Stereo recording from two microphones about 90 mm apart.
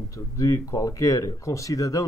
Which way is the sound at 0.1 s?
35° left (ahead or behind).